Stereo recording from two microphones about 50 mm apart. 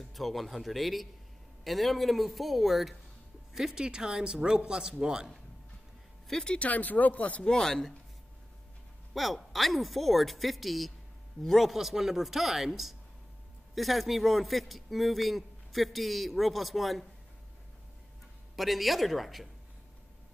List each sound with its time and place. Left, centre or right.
0.0 s speech: centre
6.2 s speech: centre
6.6 s speech: left
7.4 s speech: centre
9.1 s speech: centre
18.6 s speech: centre